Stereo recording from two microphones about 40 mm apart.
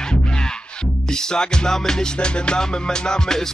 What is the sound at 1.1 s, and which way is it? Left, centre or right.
Music, centre.